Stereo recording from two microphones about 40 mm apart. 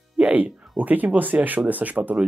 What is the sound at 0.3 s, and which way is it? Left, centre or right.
Speech, right.